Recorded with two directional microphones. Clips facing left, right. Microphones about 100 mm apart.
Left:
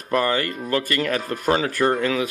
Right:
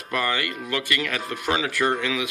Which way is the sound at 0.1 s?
35° left (ahead or behind).